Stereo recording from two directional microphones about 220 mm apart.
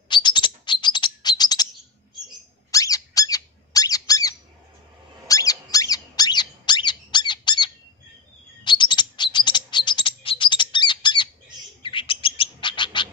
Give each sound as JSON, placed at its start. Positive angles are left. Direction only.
{"t": 0.1, "sound": "bird", "side_deg": 20}
{"t": 2.7, "sound": "squeak", "side_deg": 15}
{"t": 8.6, "sound": "chirp", "side_deg": 20}
{"t": 11.8, "sound": "bird", "side_deg": 25}